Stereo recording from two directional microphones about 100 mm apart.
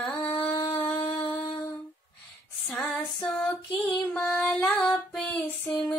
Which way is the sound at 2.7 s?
10° left (ahead or behind).